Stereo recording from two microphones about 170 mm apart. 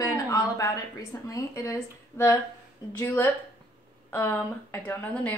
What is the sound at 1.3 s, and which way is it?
A woman's voice, 20° left (ahead or behind).